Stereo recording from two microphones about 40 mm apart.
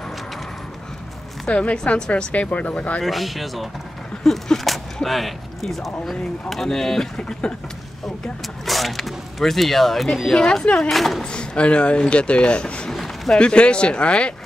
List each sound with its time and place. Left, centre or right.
1.5 s speech: left
2.0 s speech: left
2.3 s speech: left
3.0 s speech: centre
4.2 s a sound: centre
5.0 s speech: centre
8.6 s speech: centre
10.3 s speech: centre
10.9 s speech: centre
11.2 s speech: left
12.9 s a sound: centre
13.4 s speech: left